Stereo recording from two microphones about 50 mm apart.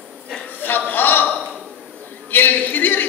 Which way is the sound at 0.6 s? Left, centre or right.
Left.